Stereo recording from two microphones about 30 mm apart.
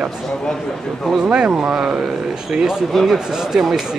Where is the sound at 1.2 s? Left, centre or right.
Right.